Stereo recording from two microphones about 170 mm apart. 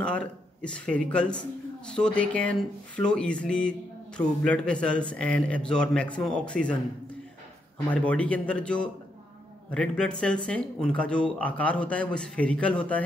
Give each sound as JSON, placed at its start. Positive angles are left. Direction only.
{"t": 0.0, "sound": "a man's voice", "side_deg": 5}
{"t": 7.9, "sound": "speech", "side_deg": 10}